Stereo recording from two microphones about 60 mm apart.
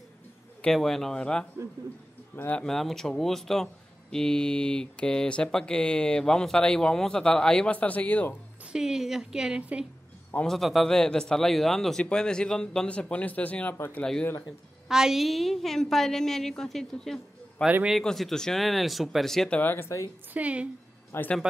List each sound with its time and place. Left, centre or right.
0.7 s speech: centre
2.6 s a woman's voice: centre; by 8.4 s left
8.7 s a woman's voice: centre
9.6 s a woman's voice: right
10.4 s a man's voice: centre; by 13.7 s left
14.9 s a woman's voice: centre
19.6 s speech: left
20.3 s a woman's voice: right
21.1 s speech: left